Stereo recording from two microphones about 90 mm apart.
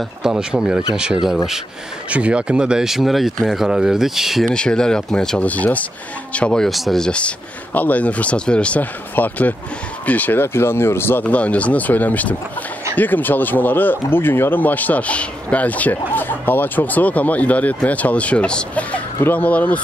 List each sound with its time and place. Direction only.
0.2 s speech: 10° right (ahead or behind); by 19.8 s 15° left (ahead or behind)